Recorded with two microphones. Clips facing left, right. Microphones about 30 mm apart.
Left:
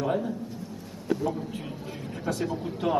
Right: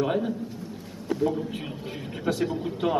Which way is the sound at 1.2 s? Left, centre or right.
Right.